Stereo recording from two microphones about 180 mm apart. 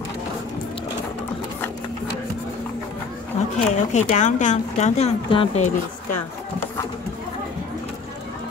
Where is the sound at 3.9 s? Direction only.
40° left (ahead or behind).